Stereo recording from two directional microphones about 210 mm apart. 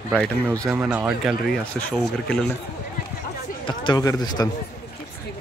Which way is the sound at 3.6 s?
20° left (ahead or behind).